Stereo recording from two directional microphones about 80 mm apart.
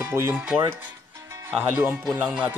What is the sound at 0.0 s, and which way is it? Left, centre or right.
Speech, right.